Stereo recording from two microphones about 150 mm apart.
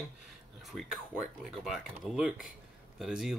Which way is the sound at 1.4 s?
Centre (ahead or behind).